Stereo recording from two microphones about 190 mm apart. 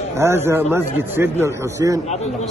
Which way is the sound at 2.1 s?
35° left (ahead or behind).